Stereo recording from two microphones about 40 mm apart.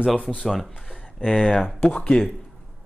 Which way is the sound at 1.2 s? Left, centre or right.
Left.